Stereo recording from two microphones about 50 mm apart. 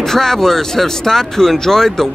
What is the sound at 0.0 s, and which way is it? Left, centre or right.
A man's voice, centre.